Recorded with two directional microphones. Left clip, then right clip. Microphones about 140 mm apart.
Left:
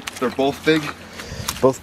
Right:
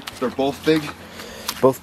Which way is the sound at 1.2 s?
Centre (ahead or behind).